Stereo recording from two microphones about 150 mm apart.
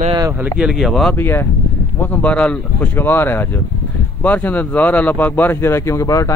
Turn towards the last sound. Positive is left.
turn(degrees=20)  # may be behind; listen again after turning